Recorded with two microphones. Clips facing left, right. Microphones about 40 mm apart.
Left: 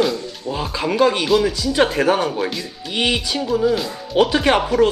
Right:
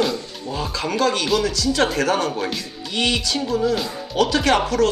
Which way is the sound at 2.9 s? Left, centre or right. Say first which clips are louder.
Left 1 dB; centre.